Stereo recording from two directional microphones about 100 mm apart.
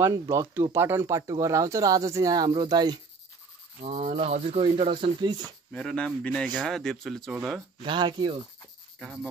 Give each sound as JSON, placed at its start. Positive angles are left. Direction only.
{"t": 0.0, "sound": "speech", "side_deg": -30}
{"t": 3.8, "sound": "speech", "side_deg": -90}
{"t": 4.9, "sound": "speech", "side_deg": -50}
{"t": 5.7, "sound": "a man's voice", "side_deg": 10}
{"t": 7.8, "sound": "speech", "side_deg": -50}
{"t": 9.0, "sound": "a man's voice", "side_deg": 0}